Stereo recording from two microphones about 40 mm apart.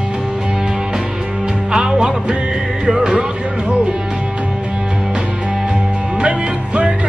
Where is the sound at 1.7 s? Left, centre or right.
Centre.